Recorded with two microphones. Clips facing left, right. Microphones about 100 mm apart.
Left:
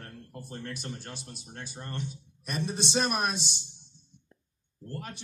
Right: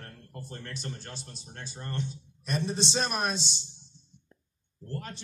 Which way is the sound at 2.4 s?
10° left (ahead or behind).